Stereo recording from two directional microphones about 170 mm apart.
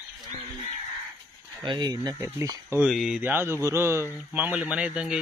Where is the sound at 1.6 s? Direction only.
25° right (ahead or behind).